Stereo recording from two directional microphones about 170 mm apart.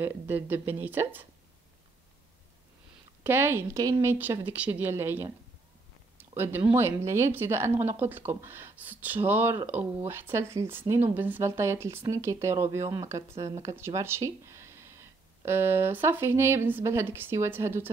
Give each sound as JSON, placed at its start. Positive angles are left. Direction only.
{"t": 0.0, "sound": "speech", "side_deg": -10}
{"t": 3.3, "sound": "speech", "side_deg": -15}
{"t": 6.3, "sound": "speech", "side_deg": -15}